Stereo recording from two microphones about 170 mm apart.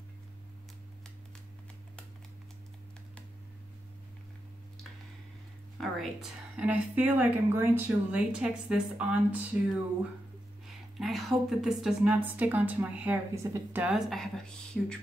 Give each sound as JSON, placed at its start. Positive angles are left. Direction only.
{"t": 5.8, "sound": "a woman's voice", "side_deg": 0}
{"t": 11.0, "sound": "a woman's voice", "side_deg": 0}
{"t": 13.8, "sound": "speech", "side_deg": 0}